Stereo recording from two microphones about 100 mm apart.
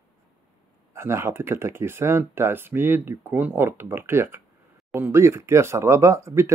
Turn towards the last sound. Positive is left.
turn(degrees=-30)  # may be behind; listen again after turning